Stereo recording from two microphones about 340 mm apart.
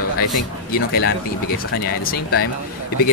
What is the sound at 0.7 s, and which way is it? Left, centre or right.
Speech, left.